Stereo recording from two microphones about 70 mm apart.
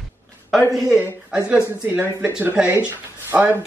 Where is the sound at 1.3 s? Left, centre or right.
Centre.